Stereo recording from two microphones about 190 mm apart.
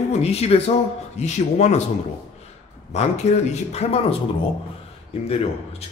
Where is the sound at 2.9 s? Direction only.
35° left (ahead or behind).